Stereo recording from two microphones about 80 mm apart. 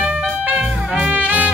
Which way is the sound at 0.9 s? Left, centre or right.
Centre.